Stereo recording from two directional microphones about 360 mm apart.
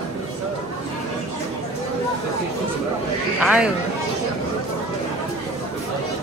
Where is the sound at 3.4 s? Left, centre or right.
Centre.